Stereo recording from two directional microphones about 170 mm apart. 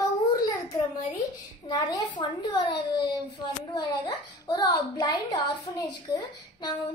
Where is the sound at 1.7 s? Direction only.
25° left (ahead or behind).